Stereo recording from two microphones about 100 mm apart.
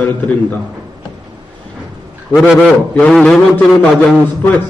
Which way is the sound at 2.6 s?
10° left (ahead or behind).